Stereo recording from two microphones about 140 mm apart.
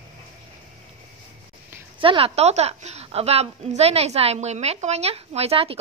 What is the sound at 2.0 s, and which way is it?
A woman's voice, 40° right (ahead or behind).